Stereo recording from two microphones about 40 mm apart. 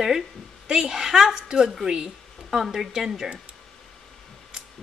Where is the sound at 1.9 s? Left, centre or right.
Right.